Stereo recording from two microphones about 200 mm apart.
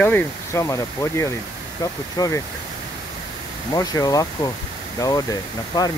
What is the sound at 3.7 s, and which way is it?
Speech, 20° left (ahead or behind).